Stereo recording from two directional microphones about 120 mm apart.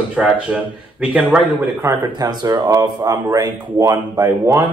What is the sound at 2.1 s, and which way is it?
Speech, 35° right (ahead or behind).